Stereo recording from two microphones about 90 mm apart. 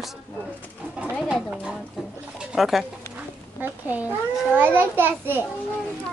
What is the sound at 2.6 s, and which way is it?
Speech, centre (ahead or behind).